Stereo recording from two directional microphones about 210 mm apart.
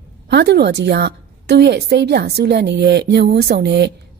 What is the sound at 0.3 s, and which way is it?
A woman's voice, 50° right (ahead or behind).